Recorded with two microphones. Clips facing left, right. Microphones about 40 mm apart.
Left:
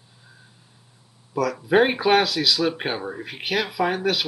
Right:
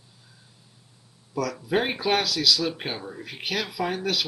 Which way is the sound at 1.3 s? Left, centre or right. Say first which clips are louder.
Left 7 dB; centre.